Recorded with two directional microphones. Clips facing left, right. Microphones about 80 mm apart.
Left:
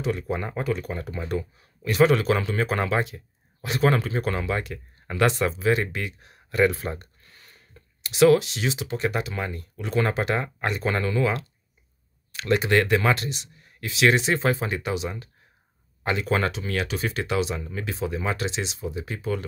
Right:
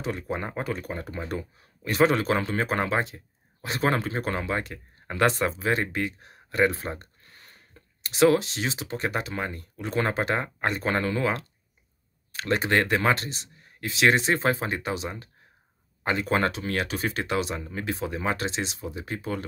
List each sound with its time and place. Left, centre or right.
0.0 s speech: right